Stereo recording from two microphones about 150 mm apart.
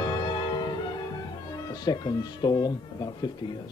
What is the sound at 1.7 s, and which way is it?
Speech, 25° left (ahead or behind).